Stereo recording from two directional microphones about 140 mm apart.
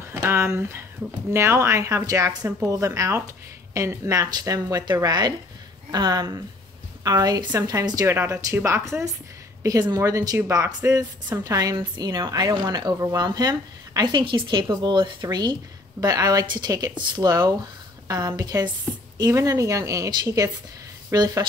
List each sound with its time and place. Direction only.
0.1 s a woman's voice: 20° right (ahead or behind)